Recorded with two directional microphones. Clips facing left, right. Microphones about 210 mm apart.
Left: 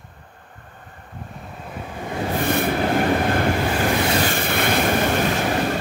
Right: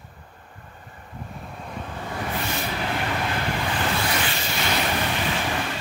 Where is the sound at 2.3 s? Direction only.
55° left (ahead or behind).